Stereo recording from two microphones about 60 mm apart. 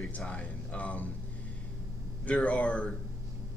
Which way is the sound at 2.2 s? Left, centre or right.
Left.